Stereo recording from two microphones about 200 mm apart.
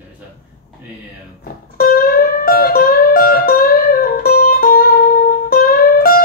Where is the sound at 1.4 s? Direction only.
45° left (ahead or behind).